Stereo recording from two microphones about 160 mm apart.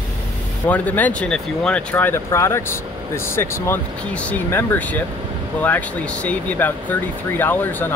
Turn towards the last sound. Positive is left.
turn(degrees=10)  # may be behind; listen again after turning